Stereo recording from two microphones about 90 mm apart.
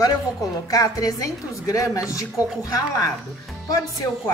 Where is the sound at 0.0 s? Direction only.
40° left (ahead or behind).